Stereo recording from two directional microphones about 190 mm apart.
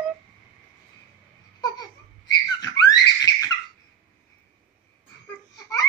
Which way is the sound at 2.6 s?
20° left (ahead or behind).